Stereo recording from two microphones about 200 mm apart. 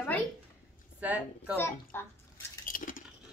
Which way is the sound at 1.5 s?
10° left (ahead or behind).